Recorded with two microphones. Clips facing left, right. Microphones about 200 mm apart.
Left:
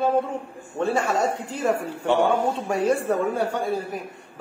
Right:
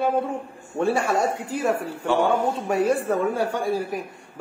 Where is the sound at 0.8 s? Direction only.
10° right (ahead or behind).